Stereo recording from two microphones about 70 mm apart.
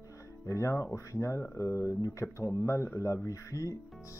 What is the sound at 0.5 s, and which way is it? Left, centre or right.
Speech, left.